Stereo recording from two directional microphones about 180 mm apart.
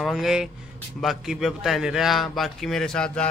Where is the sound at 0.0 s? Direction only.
Centre (ahead or behind).